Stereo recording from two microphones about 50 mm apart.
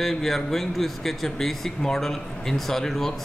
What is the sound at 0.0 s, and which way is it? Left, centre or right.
A man's voice, centre.